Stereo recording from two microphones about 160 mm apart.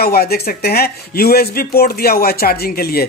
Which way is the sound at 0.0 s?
75° left (ahead or behind).